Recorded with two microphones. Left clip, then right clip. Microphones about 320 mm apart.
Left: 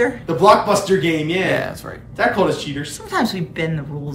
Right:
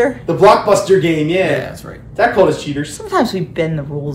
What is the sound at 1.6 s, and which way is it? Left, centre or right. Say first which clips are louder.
Speech: even; centre.